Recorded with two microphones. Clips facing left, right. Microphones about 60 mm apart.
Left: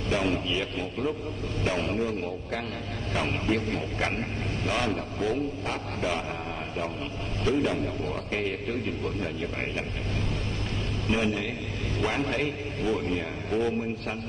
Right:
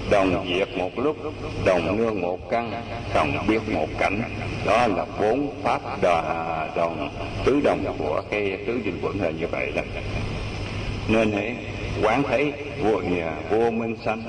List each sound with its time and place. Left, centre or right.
0.1 s a man's voice: right
11.1 s a man's voice: right